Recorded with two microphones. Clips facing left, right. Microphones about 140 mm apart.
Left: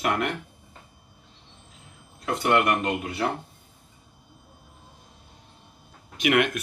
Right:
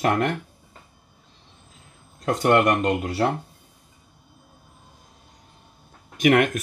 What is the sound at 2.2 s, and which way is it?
Speech, 40° right (ahead or behind).